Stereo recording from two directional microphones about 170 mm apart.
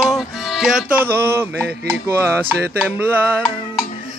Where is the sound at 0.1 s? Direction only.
Centre (ahead or behind).